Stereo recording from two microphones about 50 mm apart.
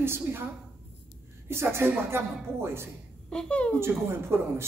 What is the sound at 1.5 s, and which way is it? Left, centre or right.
Speech, right.